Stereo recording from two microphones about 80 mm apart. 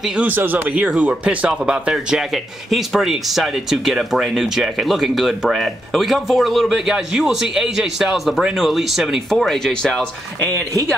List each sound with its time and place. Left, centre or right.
0.3 s speech: right; by 10.0 s centre